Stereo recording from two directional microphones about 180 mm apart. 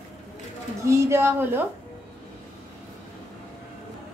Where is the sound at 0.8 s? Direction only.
15° right (ahead or behind).